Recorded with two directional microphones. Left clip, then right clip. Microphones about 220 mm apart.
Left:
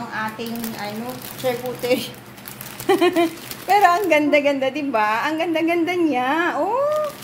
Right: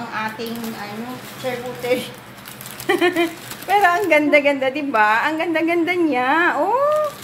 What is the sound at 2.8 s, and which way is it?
Speech, 30° left (ahead or behind).